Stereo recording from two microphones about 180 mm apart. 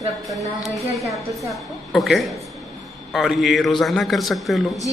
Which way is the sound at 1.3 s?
Centre (ahead or behind).